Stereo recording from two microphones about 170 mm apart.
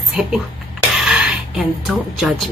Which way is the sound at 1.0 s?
5° right (ahead or behind).